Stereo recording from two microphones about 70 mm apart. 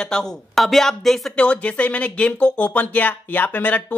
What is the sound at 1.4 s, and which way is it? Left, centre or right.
Speech, centre.